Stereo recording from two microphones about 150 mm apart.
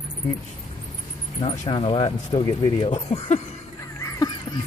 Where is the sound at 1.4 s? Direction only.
35° left (ahead or behind).